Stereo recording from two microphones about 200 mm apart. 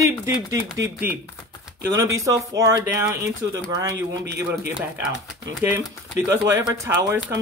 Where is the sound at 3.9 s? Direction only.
55° right (ahead or behind).